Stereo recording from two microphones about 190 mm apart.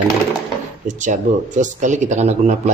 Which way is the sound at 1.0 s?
40° right (ahead or behind).